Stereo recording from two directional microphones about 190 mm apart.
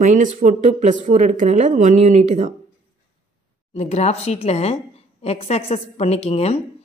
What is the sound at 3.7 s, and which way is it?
A woman's voice, 35° left (ahead or behind).